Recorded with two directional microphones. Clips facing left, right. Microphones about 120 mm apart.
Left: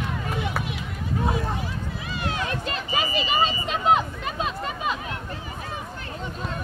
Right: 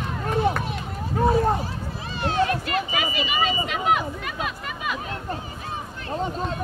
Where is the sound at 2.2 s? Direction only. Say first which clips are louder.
Right 7 dB; 30° right (ahead or behind).